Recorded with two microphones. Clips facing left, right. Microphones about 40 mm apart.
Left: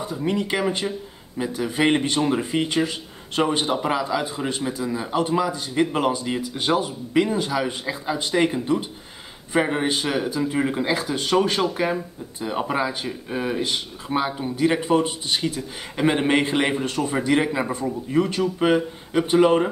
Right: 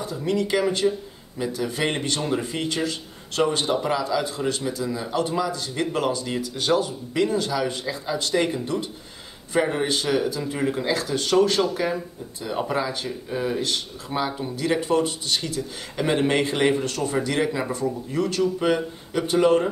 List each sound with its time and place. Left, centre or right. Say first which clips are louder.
0.0 s speech: even; left